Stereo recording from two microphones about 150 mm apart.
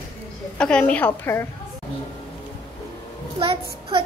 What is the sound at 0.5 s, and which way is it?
Speech, 5° left (ahead or behind).